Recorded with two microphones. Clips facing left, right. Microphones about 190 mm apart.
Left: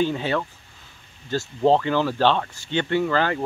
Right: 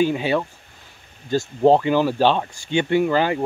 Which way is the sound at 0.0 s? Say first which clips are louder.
Right 3 dB; 10° right (ahead or behind).